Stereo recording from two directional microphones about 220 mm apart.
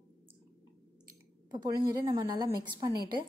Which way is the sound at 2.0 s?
15° right (ahead or behind).